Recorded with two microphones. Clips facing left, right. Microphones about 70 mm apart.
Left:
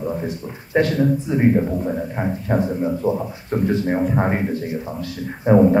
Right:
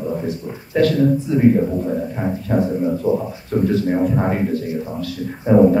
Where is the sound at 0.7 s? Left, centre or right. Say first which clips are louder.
Right 2 dB; left.